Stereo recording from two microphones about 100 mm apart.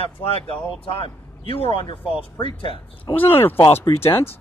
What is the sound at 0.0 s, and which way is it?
Speech, 75° left (ahead or behind).